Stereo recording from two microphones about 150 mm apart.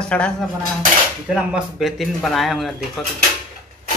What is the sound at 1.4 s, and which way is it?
Speech, 5° right (ahead or behind).